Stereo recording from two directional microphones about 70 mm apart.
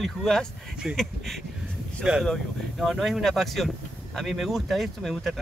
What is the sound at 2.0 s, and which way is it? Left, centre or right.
Speech, centre.